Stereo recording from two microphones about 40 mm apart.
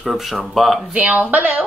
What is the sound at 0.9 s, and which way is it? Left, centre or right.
Speech, right.